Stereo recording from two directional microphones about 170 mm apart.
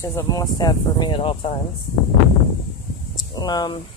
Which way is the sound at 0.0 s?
15° left (ahead or behind).